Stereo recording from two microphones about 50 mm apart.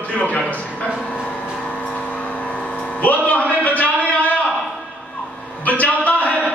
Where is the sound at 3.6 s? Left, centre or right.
Left.